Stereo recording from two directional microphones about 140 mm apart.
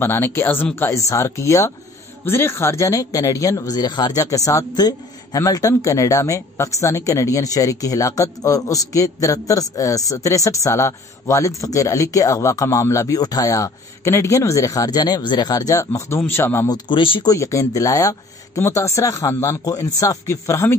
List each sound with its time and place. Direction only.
0.0 s speech: 15° left (ahead or behind)
16.6 s speech: 30° left (ahead or behind)
17.3 s speech: 25° left (ahead or behind)